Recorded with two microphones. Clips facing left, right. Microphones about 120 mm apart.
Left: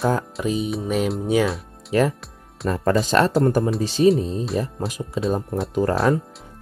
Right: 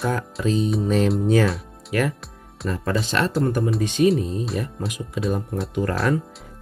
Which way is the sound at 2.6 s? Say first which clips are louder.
Left 4 dB; 40° left (ahead or behind).